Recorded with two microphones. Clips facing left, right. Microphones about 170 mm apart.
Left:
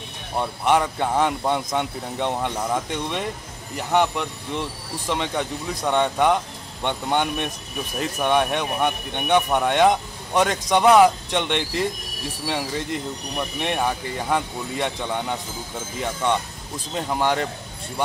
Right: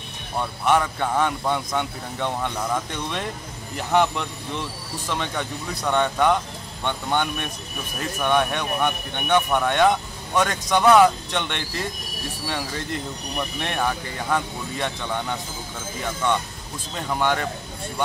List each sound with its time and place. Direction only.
0.4 s speech: 20° left (ahead or behind)